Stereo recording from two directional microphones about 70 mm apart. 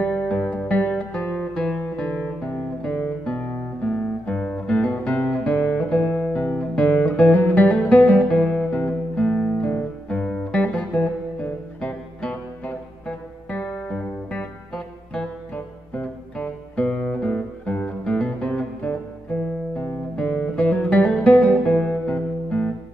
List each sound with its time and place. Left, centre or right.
0.0 s music: centre
2.0 s guitar: left
6.4 s music: centre
8.4 s guitar: centre
8.7 s music: centre
18.9 s guitar: centre
20.2 s music: centre